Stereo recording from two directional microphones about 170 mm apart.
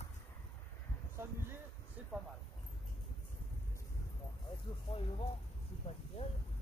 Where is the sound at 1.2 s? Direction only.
15° right (ahead or behind).